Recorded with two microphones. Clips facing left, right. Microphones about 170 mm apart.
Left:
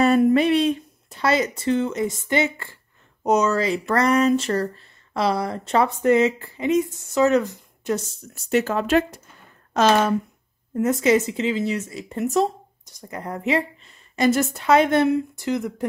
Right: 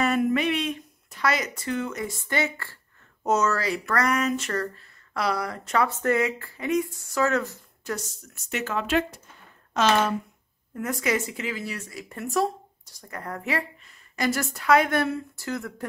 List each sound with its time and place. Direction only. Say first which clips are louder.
0.0 s speech: left 7 dB; 30° left (ahead or behind)
8.5 s speech: left 7 dB; 35° left (ahead or behind)
10.8 s speech: left 8 dB; 25° left (ahead or behind)